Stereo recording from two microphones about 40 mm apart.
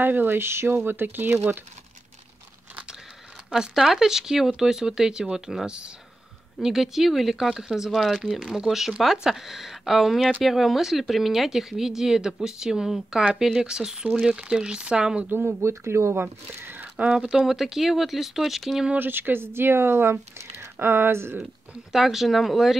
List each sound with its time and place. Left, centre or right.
0.0 s speech: right
3.5 s speech: centre
6.6 s speech: centre; by 15.0 s right
15.2 s speech: right
16.1 s speech: right
17.1 s speech: right
17.5 s speech: centre
18.9 s speech: right
21.9 s speech: centre